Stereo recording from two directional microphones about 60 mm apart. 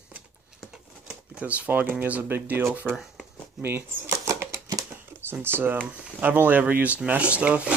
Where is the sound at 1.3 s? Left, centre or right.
Right.